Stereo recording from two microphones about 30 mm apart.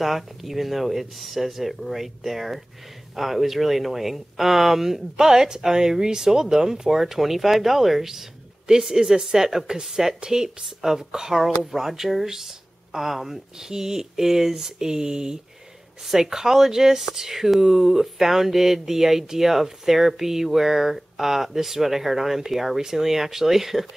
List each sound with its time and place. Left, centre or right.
0.0 s speech: centre
8.9 s speech: right; by 13.4 s centre
13.6 s speech: centre